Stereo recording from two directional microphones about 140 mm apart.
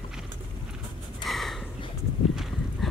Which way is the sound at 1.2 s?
Centre (ahead or behind).